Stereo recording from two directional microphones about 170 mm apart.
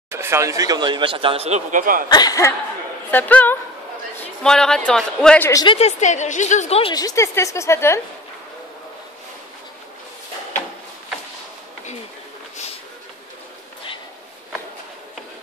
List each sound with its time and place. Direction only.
0.1 s speech: 15° right (ahead or behind); by 2.0 s 55° right (ahead or behind)
2.0 s speech: 25° left (ahead or behind)
3.1 s a woman's voice: 10° left (ahead or behind)
5.5 s speech: 20° left (ahead or behind)
5.8 s a woman's voice: 40° left (ahead or behind)
6.9 s a woman's voice: 20° left (ahead or behind)